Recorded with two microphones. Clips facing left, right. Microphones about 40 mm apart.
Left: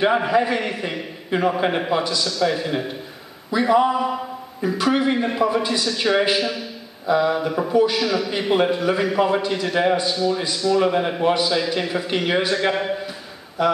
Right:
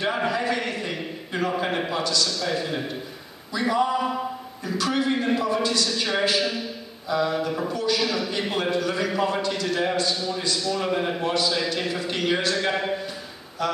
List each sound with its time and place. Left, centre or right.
0.2 s a man's voice: centre
8.0 s a man's voice: centre
8.3 s a man's voice: centre
13.6 s a man's voice: centre